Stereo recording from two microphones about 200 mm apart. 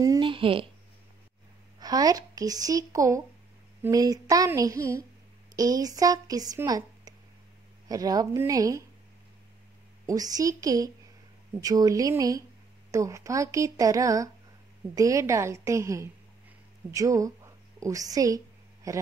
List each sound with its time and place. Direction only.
0.0 s speech: 20° right (ahead or behind)
1.8 s a woman's voice: 20° right (ahead or behind)
10.0 s a woman's voice: 20° right (ahead or behind)